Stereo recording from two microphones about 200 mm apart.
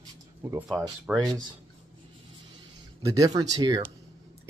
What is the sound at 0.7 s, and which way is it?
Speech, 5° right (ahead or behind).